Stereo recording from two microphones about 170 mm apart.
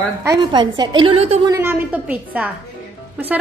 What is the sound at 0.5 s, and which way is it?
Speech, 25° right (ahead or behind).